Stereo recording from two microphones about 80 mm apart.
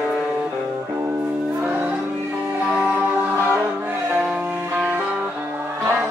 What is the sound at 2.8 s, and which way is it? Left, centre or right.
Music, right.